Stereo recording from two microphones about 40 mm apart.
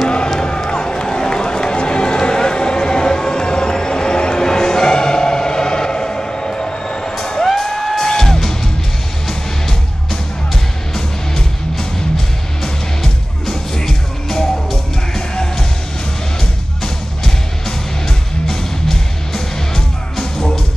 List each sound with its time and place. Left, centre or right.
0.7 s run: left
7.4 s music: centre
10.5 s music: centre
16.8 s music: centre